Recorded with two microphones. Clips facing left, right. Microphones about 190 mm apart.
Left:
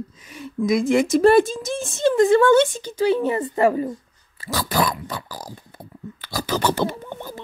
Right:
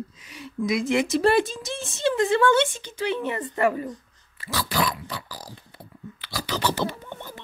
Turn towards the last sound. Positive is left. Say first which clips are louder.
# left 5 dB
turn(degrees=45)  # may be behind; listen again after turning